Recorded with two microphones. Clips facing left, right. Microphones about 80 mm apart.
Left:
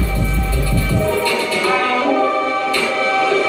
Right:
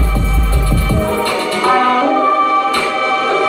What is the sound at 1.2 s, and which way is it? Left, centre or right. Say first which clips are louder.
Music: right 2 dB; right.